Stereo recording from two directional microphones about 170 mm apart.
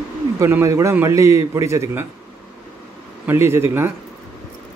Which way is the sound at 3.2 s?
15° right (ahead or behind).